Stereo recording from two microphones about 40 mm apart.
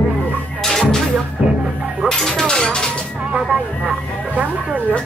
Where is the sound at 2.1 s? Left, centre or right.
Centre.